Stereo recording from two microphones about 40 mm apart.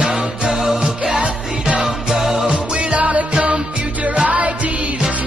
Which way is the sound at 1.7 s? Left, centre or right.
Centre.